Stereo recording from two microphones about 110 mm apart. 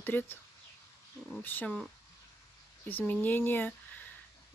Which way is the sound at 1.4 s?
15° left (ahead or behind).